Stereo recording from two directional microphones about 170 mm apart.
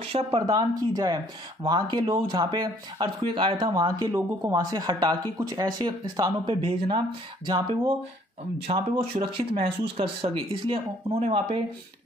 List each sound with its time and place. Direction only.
0.0 s speech: 30° right (ahead or behind)